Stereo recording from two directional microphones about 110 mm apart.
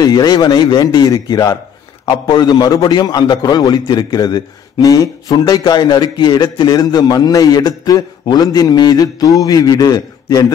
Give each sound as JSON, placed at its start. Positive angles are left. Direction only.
{"t": 0.0, "sound": "a man's voice", "side_deg": 35}